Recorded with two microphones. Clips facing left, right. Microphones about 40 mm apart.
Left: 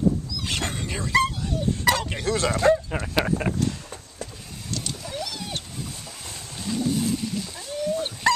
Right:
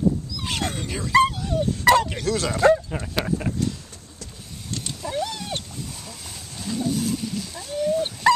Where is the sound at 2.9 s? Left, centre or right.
Centre.